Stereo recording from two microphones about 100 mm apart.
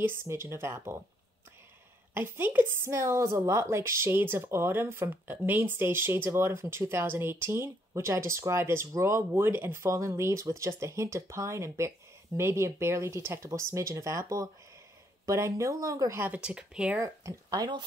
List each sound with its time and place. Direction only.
0.0 s a woman's voice: 25° right (ahead or behind)
2.1 s a woman's voice: 20° right (ahead or behind)
16.4 s speech: 10° right (ahead or behind)
17.0 s speech: 35° right (ahead or behind)